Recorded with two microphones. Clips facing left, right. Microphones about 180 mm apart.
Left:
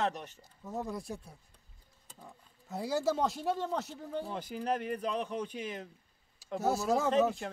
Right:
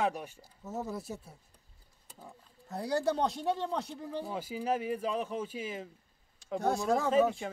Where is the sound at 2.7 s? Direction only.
Centre (ahead or behind).